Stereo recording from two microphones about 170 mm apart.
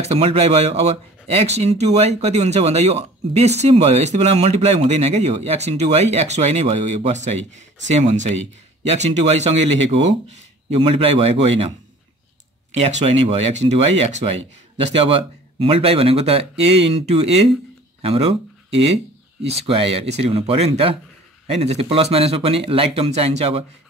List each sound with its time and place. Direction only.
0.0 s speech: 35° right (ahead or behind)
13.0 s speech: 35° right (ahead or behind)
19.4 s speech: 35° right (ahead or behind)